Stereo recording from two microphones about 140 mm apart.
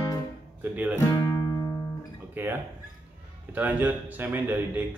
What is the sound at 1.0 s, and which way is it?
Music, 25° left (ahead or behind).